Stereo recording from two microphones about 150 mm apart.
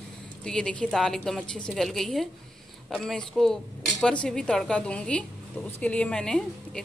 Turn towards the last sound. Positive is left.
turn(degrees=5)  # may be behind; listen again after turning